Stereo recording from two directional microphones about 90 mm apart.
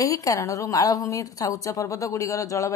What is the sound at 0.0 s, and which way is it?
A woman's voice, 40° left (ahead or behind).